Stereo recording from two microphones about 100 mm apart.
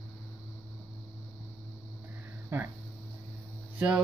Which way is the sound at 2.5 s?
25° right (ahead or behind).